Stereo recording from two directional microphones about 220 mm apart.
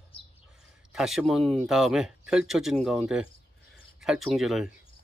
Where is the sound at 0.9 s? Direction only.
Centre (ahead or behind).